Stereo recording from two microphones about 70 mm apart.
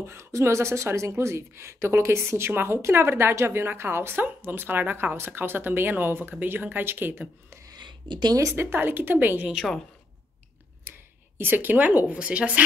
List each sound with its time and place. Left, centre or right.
0.0 s speech: right
7.7 s a sound: right
8.7 s a woman's voice: right
10.8 s speech: right